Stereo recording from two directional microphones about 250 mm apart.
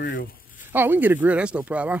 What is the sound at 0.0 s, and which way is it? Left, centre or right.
Speech, left.